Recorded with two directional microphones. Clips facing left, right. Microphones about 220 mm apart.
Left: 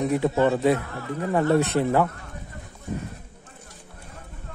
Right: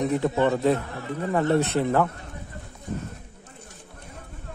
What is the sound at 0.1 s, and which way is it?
Speech, 15° left (ahead or behind).